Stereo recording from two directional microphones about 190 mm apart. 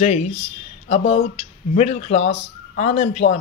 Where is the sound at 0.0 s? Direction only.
35° left (ahead or behind).